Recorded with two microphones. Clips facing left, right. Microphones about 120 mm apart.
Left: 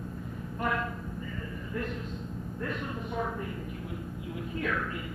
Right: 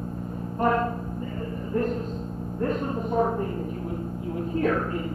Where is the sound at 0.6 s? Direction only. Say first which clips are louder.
Right 9 dB; 40° right (ahead or behind).